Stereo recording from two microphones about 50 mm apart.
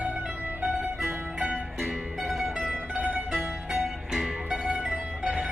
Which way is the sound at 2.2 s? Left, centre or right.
Centre.